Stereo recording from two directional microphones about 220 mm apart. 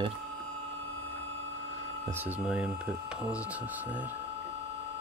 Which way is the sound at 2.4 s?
5° right (ahead or behind).